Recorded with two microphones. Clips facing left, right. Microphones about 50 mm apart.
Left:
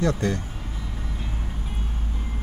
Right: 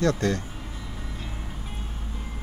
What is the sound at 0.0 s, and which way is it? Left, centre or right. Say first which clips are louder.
Speech: even; centre.